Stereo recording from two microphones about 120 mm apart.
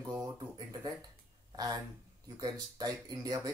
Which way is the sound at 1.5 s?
35° right (ahead or behind).